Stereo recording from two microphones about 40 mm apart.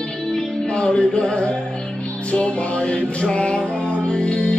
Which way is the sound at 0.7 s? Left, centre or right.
Left.